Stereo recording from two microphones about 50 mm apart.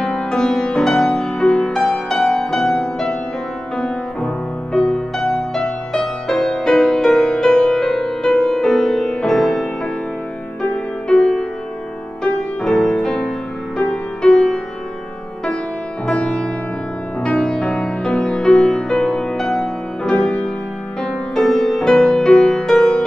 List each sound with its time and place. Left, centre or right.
0.0 s music: centre
10.6 s music: left
11.1 s music: centre
16.2 s music: centre